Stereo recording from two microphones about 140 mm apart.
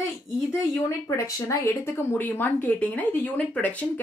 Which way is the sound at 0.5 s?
20° left (ahead or behind).